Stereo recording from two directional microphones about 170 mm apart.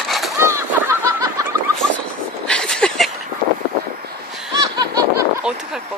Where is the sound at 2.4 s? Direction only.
5° left (ahead or behind).